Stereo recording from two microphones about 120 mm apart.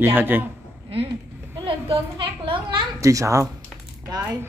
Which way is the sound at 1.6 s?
50° right (ahead or behind).